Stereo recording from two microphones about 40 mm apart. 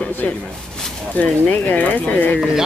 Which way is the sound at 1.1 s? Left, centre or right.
Left.